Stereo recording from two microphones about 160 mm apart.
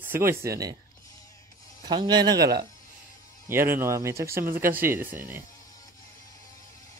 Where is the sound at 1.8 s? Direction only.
25° right (ahead or behind).